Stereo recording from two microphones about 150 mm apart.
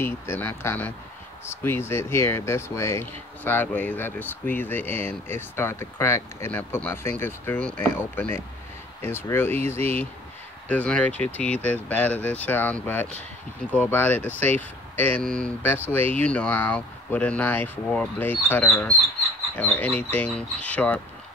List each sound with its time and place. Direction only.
0.0 s speech: 15° left (ahead or behind)